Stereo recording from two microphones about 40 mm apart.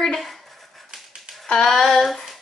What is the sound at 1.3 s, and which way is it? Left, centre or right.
Music, right.